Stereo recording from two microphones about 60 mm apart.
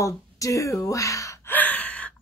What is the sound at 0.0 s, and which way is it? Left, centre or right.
Speech, left.